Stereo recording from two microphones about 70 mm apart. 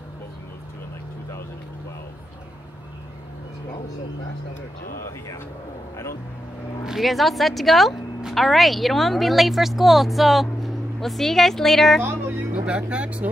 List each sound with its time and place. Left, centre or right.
6.9 s a woman's voice: centre
12.0 s vehicle: right
12.5 s speech: centre